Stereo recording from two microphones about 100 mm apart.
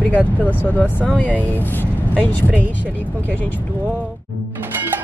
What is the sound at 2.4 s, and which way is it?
Speech, 15° right (ahead or behind).